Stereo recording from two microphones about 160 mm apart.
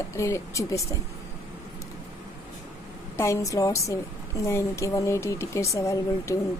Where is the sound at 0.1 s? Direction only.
20° left (ahead or behind).